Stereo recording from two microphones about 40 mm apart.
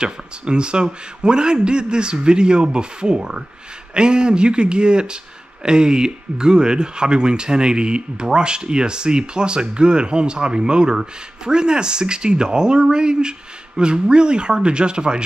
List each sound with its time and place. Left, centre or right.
0.0 s speech: right